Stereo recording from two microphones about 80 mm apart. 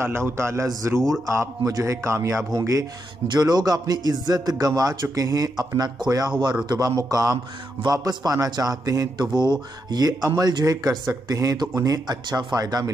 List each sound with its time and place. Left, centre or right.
0.0 s a man's voice: right
3.3 s speech: right
9.3 s speech: right